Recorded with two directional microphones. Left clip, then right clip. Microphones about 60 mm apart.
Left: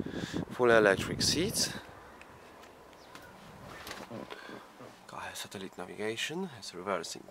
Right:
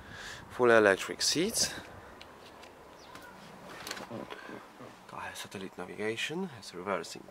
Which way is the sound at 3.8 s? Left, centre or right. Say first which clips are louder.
Right 3 dB; right.